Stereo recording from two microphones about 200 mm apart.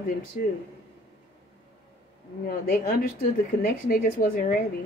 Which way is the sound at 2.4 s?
45° left (ahead or behind).